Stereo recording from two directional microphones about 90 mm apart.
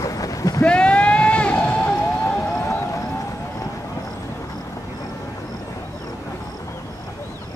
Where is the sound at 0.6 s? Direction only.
10° left (ahead or behind).